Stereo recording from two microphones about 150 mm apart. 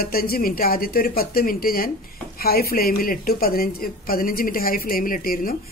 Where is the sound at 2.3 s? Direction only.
90° left.